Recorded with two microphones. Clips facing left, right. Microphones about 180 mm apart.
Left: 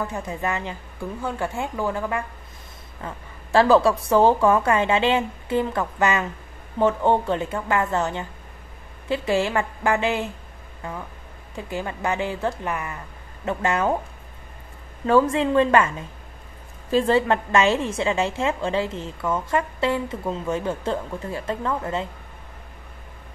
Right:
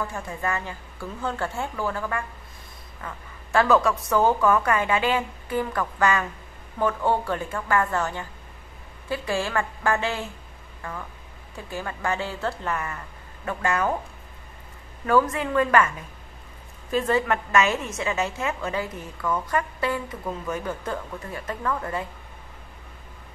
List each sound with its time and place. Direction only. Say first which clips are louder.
0.0 s speech: left 2 dB; 20° left (ahead or behind)
3.0 s a woman's voice: left 3 dB; 30° left (ahead or behind)
15.0 s a woman's voice: left 4 dB; 25° left (ahead or behind)